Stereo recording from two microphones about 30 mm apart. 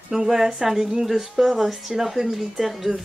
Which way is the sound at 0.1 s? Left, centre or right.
Centre.